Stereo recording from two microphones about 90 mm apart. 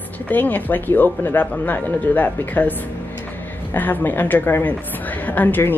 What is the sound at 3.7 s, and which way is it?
Speech, 20° left (ahead or behind).